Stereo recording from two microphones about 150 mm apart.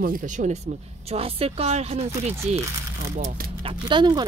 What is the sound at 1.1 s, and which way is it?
Speech, 40° right (ahead or behind).